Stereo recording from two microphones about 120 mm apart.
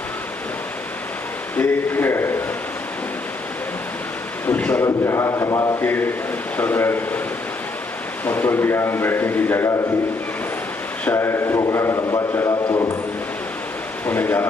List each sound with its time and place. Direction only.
1.6 s a sound: 15° left (ahead or behind)
4.5 s a sound: 15° left (ahead or behind)
4.8 s a man's voice: 25° left (ahead or behind)
5.8 s speech: 15° left (ahead or behind)
8.3 s a man's voice: 15° left (ahead or behind)
11.1 s a man's voice: 20° left (ahead or behind)
14.0 s a man's voice: 15° left (ahead or behind)